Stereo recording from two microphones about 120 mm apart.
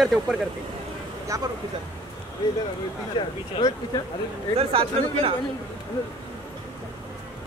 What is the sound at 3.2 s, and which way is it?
Speech, 40° left (ahead or behind).